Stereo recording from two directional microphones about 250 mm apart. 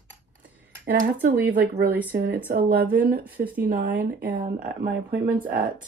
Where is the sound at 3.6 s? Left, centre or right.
Right.